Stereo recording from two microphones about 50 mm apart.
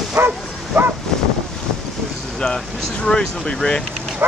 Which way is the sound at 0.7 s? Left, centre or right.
Right.